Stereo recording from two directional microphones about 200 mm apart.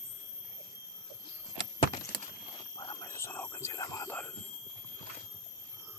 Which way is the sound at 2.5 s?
20° left (ahead or behind).